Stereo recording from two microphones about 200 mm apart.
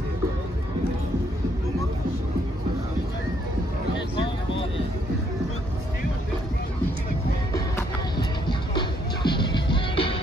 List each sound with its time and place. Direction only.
7.7 s music: 20° left (ahead or behind)